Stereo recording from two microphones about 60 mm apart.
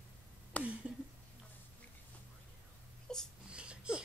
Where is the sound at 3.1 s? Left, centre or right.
Centre.